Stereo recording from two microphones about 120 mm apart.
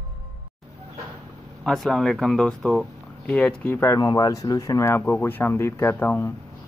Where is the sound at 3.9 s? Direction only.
30° left (ahead or behind).